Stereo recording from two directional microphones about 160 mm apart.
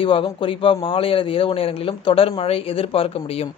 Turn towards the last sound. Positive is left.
turn(degrees=35)  # may be behind; listen again after turning